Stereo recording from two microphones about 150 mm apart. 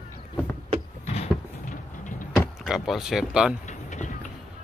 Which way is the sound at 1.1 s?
50° left (ahead or behind).